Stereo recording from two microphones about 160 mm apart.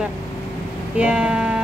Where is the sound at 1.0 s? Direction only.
5° right (ahead or behind).